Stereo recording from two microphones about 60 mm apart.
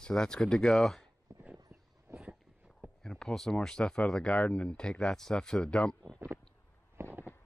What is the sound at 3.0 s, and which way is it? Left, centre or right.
Speech, centre.